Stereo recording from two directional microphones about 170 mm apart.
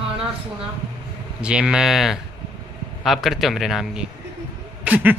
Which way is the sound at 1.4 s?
5° right (ahead or behind).